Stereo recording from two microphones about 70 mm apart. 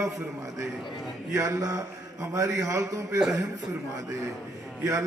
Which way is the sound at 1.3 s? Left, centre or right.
Right.